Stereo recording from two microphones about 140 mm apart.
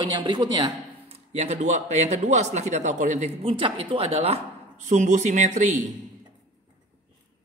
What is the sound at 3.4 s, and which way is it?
Speech, 40° right (ahead or behind).